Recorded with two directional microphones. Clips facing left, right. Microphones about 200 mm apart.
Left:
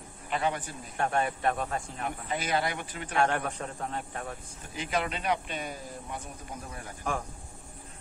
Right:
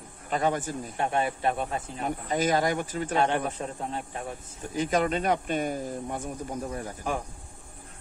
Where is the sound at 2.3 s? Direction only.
45° right (ahead or behind).